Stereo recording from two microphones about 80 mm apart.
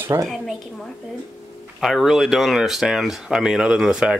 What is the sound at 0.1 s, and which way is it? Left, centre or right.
Speech, right.